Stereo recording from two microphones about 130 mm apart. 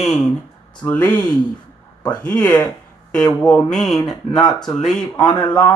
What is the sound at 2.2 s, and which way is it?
Speech, 10° left (ahead or behind).